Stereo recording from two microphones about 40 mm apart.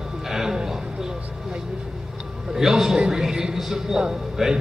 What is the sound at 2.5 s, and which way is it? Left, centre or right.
A man's voice, centre.